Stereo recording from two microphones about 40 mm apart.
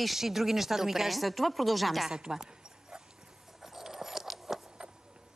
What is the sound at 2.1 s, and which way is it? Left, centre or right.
Dog, centre.